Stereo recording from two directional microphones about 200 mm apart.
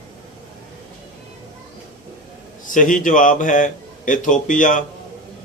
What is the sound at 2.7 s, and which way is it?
Speech, 40° left (ahead or behind).